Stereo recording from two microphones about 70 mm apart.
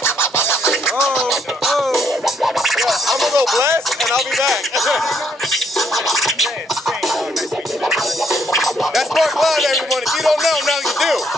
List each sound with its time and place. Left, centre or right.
0.0 s scratching: left
0.7 s music: centre
4.0 s speech: centre
5.5 s scratching: centre
7.9 s music: centre
10.2 s speech: centre